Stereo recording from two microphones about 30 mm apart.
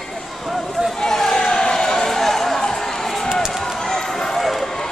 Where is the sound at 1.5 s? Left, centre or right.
Left.